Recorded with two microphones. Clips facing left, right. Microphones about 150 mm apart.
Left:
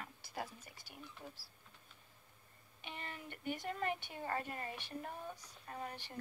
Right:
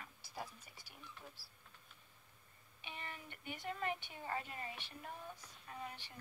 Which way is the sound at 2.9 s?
45° left (ahead or behind).